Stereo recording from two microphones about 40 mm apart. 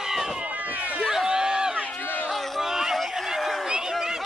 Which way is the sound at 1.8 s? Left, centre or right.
Left.